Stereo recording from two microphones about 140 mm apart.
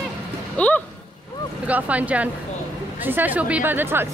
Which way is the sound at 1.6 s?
10° right (ahead or behind).